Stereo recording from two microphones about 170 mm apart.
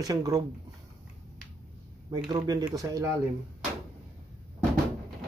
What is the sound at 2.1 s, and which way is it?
Speech, 25° right (ahead or behind).